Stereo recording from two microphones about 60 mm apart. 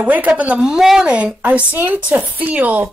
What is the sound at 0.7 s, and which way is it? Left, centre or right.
A woman's voice, centre.